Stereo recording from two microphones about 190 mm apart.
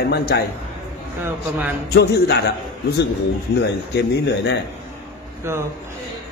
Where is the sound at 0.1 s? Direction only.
55° left (ahead or behind).